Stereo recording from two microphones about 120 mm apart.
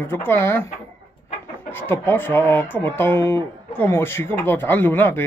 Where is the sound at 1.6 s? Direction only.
20° left (ahead or behind).